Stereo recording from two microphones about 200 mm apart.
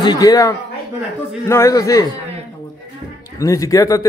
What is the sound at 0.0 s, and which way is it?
Speech, 20° left (ahead or behind).